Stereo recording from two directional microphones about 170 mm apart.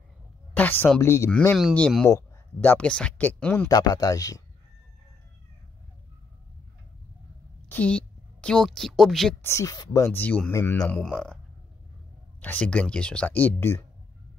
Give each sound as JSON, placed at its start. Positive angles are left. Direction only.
{"t": 0.6, "sound": "speech", "side_deg": 10}
{"t": 2.0, "sound": "speech", "side_deg": 15}
{"t": 3.6, "sound": "speech", "side_deg": 20}
{"t": 7.6, "sound": "a woman's voice", "side_deg": 10}
{"t": 9.4, "sound": "speech", "side_deg": 15}
{"t": 12.4, "sound": "speech", "side_deg": 10}